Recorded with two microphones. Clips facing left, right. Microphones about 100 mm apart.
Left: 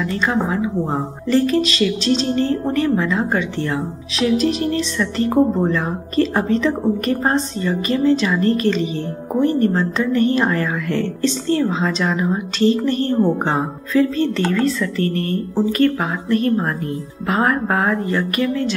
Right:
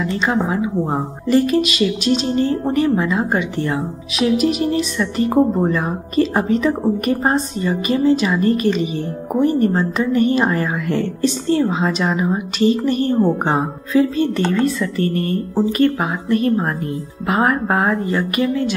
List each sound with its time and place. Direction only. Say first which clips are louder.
0.0 s a woman's voice: right 1 dB; 15° right (ahead or behind)